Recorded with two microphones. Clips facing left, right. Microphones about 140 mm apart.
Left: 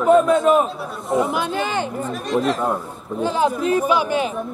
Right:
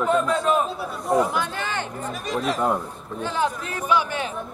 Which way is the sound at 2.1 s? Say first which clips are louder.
Left 5 dB; centre (ahead or behind).